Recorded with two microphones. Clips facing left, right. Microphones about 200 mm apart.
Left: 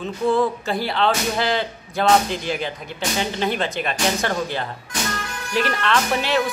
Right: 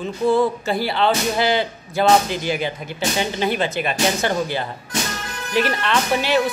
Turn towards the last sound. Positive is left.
turn(degrees=-5)  # may be behind; listen again after turning